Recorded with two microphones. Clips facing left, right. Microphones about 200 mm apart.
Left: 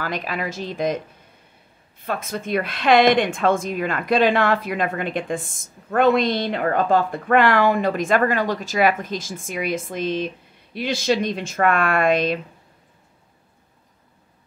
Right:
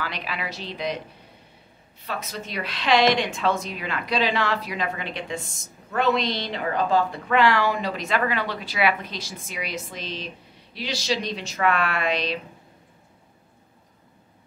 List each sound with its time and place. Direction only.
0.0 s a woman's voice: 45° left (ahead or behind)
2.0 s a woman's voice: 50° left (ahead or behind)